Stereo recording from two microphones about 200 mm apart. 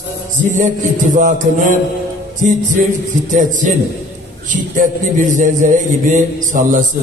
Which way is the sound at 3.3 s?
40° right (ahead or behind).